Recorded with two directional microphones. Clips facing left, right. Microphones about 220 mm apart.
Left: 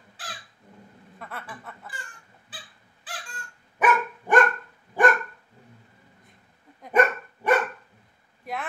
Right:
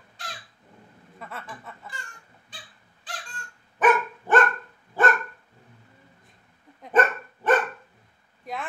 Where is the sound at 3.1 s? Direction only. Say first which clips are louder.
Even; 5° left (ahead or behind).